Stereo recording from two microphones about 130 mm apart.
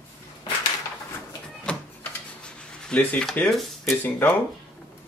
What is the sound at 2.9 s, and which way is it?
Speech, 10° left (ahead or behind).